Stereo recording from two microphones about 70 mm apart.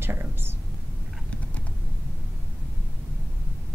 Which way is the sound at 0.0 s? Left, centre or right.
Right.